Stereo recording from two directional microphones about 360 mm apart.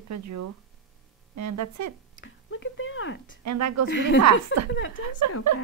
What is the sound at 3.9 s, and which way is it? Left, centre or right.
A woman's voice, left.